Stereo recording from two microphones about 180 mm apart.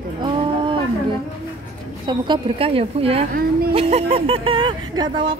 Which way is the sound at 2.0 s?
25° right (ahead or behind).